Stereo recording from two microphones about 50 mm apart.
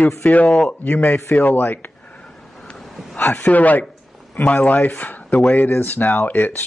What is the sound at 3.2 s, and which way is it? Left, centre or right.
Speech, left.